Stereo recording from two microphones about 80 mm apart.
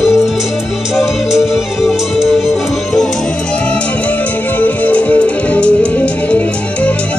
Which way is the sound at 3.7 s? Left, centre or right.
Left.